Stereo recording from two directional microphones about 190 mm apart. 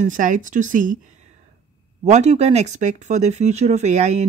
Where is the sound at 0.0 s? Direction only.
40° right (ahead or behind).